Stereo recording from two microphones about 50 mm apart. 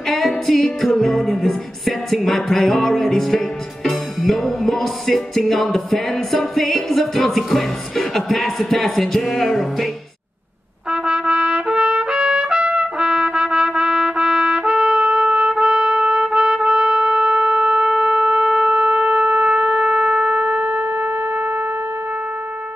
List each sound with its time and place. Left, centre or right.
0.5 s music: centre
7.3 s music: centre
10.9 s trumpet: centre; by 21.6 s right